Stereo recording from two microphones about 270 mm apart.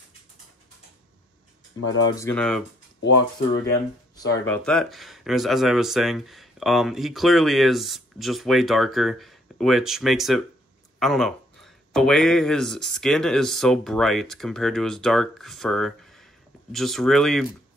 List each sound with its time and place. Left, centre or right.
1.8 s speech: left
2.1 s speech: centre
4.3 s speech: centre